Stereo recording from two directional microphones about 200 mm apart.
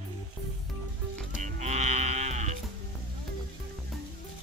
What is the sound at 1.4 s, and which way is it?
Livestock, 35° right (ahead or behind).